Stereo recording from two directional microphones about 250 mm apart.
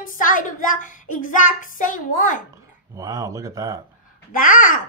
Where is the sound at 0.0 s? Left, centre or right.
Left.